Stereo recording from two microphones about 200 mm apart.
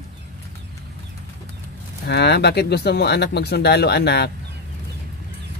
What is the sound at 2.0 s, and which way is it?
Speech, 55° left (ahead or behind).